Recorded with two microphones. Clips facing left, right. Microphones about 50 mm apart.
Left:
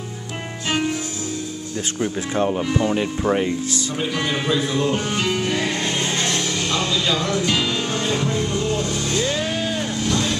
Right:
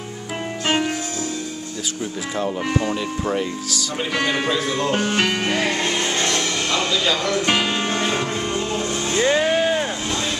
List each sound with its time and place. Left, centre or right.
0.7 s music: right
2.8 s speech: centre
4.1 s speech: right
5.5 s music: right